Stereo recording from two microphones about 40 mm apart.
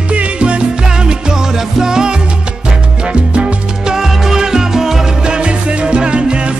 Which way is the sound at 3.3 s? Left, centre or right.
Right.